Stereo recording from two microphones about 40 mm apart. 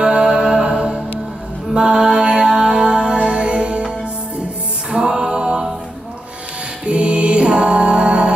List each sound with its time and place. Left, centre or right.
0.2 s mantra: right
1.7 s music: centre
4.9 s music: centre
6.9 s music: right